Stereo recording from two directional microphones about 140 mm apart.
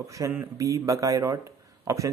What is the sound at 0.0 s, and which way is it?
Speech, 25° right (ahead or behind).